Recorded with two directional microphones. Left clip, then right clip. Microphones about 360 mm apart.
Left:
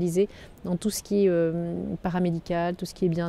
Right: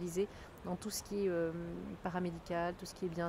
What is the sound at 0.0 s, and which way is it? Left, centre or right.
Speech, left.